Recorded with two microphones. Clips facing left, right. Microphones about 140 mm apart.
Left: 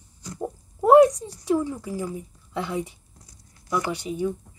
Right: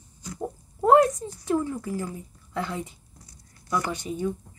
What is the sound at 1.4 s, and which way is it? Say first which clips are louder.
A woman's voice: left 2 dB; 15° left (ahead or behind).